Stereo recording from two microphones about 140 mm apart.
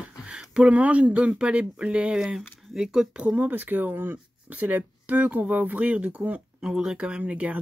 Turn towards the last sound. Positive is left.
turn(degrees=-10)  # may be behind; listen again after turning